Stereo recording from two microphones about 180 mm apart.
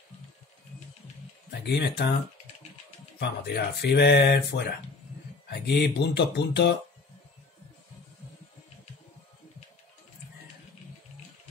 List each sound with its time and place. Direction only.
1.5 s speech: 65° left (ahead or behind)
3.2 s speech: 65° left (ahead or behind)